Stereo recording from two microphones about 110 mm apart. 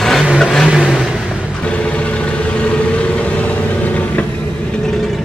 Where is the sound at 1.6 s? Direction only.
10° left (ahead or behind).